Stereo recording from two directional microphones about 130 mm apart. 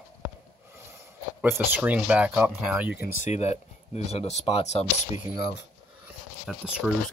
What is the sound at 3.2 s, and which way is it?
Speech, 60° left (ahead or behind).